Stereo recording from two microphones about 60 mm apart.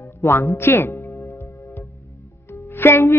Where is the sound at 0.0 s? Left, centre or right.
Left.